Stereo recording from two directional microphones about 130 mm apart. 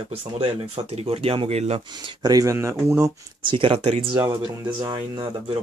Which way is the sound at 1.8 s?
35° right (ahead or behind).